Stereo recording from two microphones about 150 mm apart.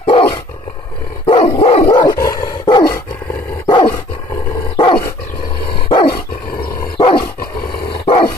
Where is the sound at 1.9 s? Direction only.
25° left (ahead or behind).